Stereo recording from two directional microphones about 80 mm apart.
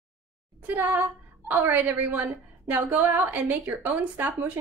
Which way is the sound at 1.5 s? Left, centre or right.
Right.